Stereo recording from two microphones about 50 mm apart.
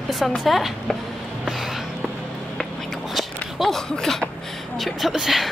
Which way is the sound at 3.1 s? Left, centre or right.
Centre.